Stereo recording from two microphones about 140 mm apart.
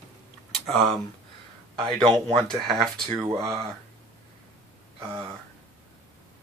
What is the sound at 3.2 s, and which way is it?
Speech, 20° right (ahead or behind).